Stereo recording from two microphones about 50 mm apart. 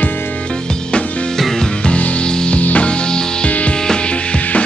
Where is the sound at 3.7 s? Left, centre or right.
Centre.